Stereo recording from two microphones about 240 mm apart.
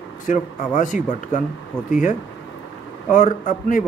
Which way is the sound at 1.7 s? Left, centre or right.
Centre.